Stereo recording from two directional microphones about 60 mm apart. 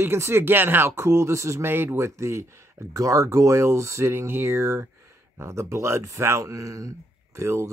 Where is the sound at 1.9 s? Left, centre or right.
Right.